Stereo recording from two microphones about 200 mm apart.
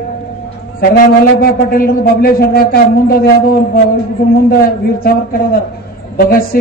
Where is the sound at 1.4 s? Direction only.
50° left (ahead or behind).